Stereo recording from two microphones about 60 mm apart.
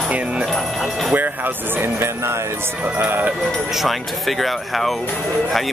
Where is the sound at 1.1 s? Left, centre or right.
Right.